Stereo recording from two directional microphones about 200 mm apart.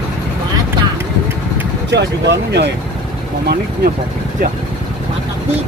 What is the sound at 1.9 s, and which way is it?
Speech, 60° right (ahead or behind).